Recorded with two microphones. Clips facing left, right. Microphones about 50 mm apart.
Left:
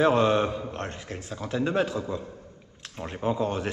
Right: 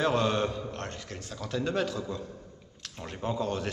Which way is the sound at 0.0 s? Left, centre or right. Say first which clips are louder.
Left 5 dB; centre.